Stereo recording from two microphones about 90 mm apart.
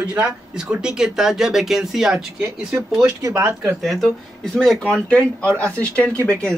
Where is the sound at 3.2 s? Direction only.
35° right (ahead or behind).